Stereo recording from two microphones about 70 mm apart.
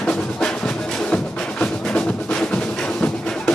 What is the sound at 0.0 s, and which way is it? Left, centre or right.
Music, centre.